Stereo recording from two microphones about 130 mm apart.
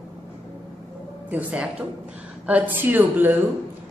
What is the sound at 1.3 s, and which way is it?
A woman's voice, 10° right (ahead or behind).